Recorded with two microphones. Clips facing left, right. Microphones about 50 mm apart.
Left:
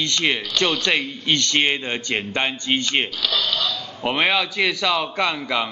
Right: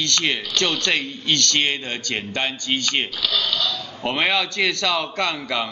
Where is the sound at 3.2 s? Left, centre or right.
Centre.